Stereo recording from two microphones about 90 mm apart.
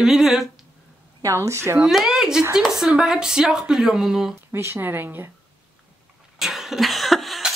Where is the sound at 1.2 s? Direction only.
35° right (ahead or behind).